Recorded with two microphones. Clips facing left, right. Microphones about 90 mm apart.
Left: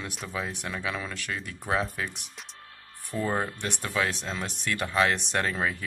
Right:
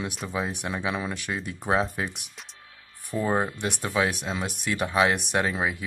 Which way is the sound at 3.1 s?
20° right (ahead or behind).